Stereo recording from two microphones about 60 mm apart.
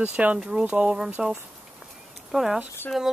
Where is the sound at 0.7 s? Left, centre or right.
Right.